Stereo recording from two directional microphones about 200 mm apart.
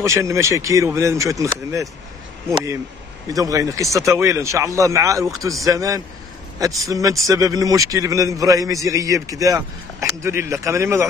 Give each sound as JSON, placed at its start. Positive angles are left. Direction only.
{"t": 0.0, "sound": "a man's voice", "side_deg": -15}